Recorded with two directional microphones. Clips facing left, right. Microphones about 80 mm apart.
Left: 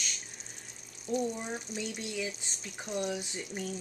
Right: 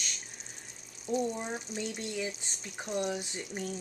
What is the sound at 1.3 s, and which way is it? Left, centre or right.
Speech, centre.